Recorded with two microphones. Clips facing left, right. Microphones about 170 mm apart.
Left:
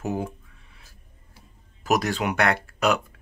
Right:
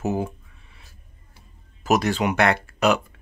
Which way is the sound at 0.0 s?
5° right (ahead or behind).